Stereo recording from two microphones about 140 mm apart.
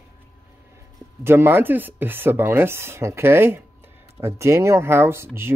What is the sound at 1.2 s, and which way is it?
Speech, 15° right (ahead or behind).